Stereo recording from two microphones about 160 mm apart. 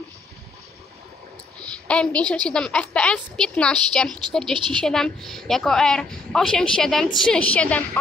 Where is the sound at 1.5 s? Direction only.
5° left (ahead or behind).